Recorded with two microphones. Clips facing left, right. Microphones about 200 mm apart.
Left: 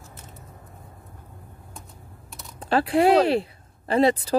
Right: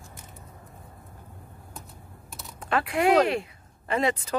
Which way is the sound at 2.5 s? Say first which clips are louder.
Left 6 dB; 30° left (ahead or behind).